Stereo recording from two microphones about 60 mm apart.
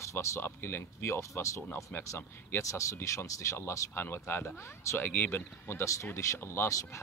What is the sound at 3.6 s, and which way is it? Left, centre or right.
Speech, left.